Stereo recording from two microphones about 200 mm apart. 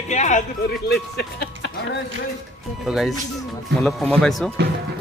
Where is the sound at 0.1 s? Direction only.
35° left (ahead or behind).